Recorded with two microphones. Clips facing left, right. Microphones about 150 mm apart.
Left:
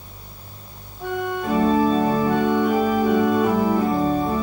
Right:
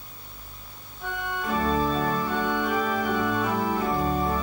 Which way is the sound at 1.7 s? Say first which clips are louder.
Left 6 dB; 25° left (ahead or behind).